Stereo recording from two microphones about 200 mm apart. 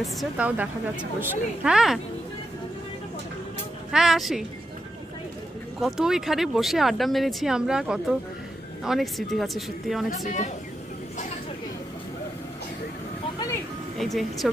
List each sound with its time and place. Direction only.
0.0 s speech: 5° right (ahead or behind)
3.9 s speech: centre (ahead or behind)
5.8 s speech: centre (ahead or behind)
10.0 s a woman's voice: 40° left (ahead or behind)
13.9 s speech: centre (ahead or behind)